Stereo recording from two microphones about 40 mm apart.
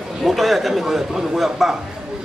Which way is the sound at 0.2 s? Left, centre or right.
Centre.